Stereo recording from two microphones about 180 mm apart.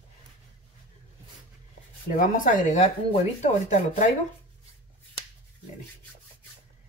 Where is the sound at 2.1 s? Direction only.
45° left (ahead or behind).